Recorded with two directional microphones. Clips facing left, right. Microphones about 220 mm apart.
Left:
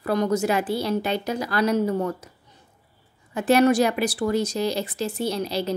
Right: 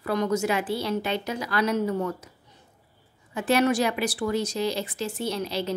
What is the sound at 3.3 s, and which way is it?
A woman's voice, 40° left (ahead or behind).